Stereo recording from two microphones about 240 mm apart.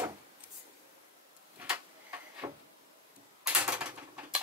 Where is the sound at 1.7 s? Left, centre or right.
Centre.